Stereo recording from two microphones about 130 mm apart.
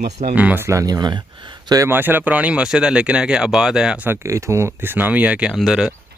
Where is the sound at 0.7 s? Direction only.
30° right (ahead or behind).